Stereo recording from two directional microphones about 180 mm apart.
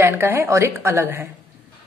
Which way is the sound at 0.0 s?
15° right (ahead or behind).